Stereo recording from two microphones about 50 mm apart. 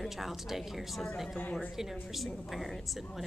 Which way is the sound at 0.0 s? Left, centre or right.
Centre.